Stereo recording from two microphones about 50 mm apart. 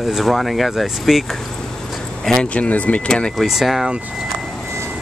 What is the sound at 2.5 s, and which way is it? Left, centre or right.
Speech, left.